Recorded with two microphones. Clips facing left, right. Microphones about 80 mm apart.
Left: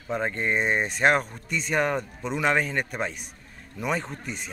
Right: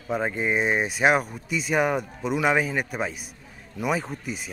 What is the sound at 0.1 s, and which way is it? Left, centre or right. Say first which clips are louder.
Speech: right 1 dB; centre.